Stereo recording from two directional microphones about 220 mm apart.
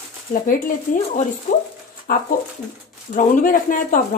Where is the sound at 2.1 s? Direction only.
40° left (ahead or behind).